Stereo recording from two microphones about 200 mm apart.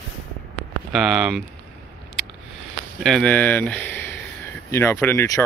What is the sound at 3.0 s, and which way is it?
Speech, centre (ahead or behind).